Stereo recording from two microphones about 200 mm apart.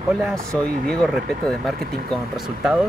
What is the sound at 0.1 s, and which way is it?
Speech, centre (ahead or behind).